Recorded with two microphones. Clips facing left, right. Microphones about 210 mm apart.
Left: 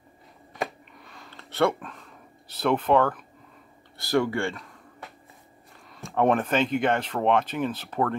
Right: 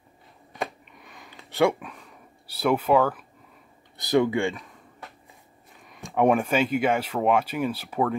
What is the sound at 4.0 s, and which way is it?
Speech, 20° right (ahead or behind).